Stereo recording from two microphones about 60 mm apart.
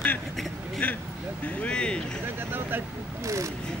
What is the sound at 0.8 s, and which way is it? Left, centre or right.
Speech, left.